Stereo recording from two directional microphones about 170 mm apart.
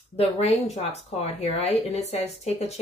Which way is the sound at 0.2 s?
35° left (ahead or behind).